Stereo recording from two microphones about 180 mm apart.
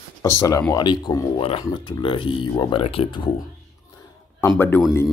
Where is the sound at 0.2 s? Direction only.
15° left (ahead or behind).